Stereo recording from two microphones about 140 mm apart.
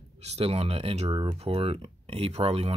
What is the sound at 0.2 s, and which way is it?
Speech, 50° right (ahead or behind).